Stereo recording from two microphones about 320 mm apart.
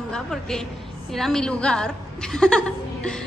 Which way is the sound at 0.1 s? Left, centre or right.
Centre.